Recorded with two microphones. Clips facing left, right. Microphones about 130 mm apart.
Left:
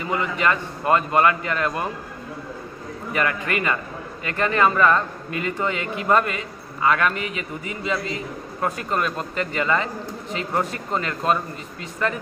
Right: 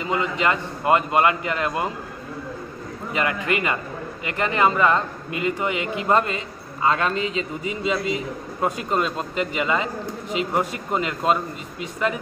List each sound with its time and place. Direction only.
0.0 s a man's voice: 20° right (ahead or behind)
3.1 s a man's voice: 20° right (ahead or behind)